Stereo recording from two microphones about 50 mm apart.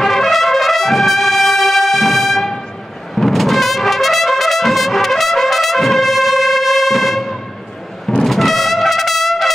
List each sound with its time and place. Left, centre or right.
0.0 s brass instrument: centre
8.2 s trumpet: centre